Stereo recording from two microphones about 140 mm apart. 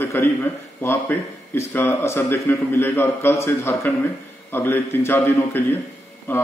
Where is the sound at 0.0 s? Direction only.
15° left (ahead or behind).